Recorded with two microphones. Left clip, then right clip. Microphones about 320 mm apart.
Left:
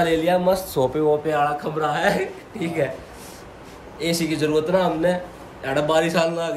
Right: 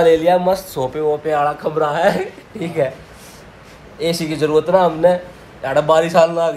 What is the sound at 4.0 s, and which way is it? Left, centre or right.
A man's voice, centre.